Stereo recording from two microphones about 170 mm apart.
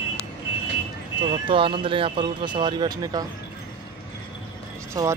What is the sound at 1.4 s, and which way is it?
Speech, 30° right (ahead or behind).